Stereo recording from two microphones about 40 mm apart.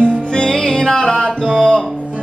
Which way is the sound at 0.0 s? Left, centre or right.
Left.